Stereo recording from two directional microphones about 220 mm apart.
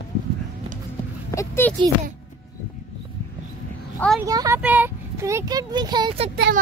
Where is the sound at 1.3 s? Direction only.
10° left (ahead or behind).